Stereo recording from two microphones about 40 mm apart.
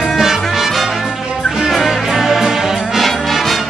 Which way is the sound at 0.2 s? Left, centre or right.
Centre.